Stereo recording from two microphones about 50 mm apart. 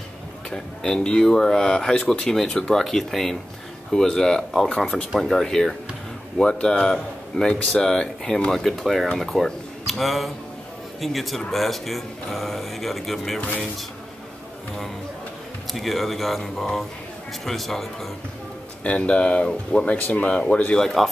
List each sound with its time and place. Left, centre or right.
0.5 s speech: centre
2.8 s speech: centre
4.6 s speech: centre
5.2 s speech: centre
15.7 s speech: centre
18.9 s speech: left
20.7 s speech: centre